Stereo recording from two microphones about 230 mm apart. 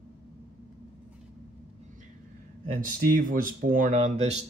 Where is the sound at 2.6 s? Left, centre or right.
Right.